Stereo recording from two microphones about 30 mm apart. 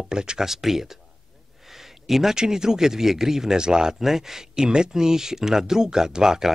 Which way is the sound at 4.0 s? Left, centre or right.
Centre.